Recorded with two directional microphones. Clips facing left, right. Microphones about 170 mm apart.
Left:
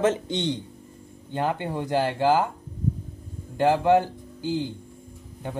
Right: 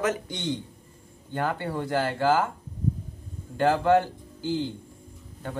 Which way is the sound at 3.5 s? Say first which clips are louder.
Left 2 dB; 15° left (ahead or behind).